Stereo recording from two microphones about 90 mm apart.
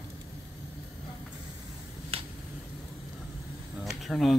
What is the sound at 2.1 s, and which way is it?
Finger snapping, 90° right.